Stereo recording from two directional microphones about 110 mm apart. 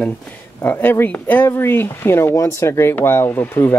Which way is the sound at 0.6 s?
20° left (ahead or behind).